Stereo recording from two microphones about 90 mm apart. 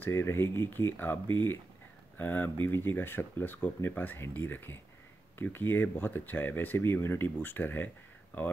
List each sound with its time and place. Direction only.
0.0 s speech: 30° left (ahead or behind)